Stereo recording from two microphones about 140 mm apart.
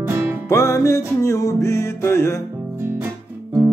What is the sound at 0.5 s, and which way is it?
Music, 20° left (ahead or behind).